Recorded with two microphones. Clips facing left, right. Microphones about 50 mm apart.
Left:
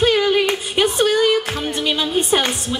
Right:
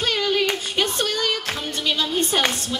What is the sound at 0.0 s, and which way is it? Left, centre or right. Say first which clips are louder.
Music: left 6 dB; centre.